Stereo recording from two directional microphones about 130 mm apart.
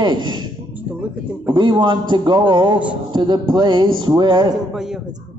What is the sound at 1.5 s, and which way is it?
A man's voice, 35° right (ahead or behind).